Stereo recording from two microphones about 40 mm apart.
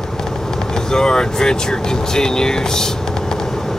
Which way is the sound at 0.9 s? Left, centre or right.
Centre.